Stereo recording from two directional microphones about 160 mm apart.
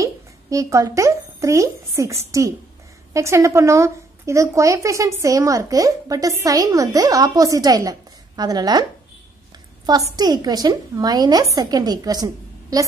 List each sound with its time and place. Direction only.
0.0 s a child's voice: 20° right (ahead or behind)
10.1 s a woman's voice: 25° right (ahead or behind)